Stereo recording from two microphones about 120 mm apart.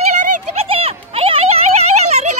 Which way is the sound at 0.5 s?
55° right (ahead or behind).